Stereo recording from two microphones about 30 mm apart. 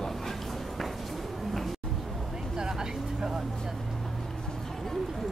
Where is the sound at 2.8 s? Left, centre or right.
Centre.